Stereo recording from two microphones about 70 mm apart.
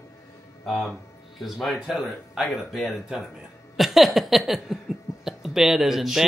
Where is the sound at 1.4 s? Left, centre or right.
Centre.